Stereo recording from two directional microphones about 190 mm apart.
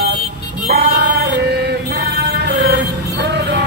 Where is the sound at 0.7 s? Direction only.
60° right (ahead or behind).